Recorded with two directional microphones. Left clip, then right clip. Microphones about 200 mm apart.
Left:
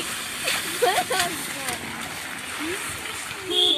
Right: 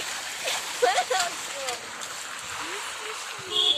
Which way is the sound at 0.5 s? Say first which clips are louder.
Left 2 dB; 50° left (ahead or behind).